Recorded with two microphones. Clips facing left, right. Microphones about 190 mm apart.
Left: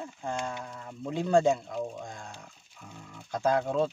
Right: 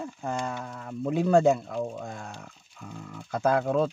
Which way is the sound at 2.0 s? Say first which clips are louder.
Right 4 dB; 70° right (ahead or behind).